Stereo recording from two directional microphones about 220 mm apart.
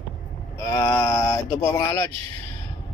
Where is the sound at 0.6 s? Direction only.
10° left (ahead or behind).